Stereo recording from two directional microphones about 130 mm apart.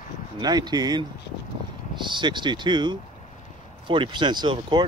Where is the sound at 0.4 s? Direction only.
30° right (ahead or behind).